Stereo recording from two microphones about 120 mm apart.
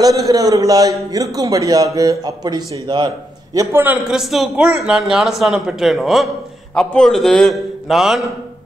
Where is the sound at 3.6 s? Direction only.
20° right (ahead or behind).